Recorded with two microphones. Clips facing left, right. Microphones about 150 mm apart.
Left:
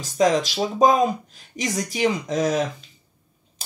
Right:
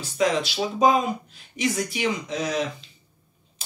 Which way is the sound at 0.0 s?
40° left (ahead or behind).